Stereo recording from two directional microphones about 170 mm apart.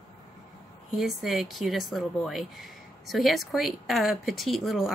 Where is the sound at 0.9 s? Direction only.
Centre (ahead or behind).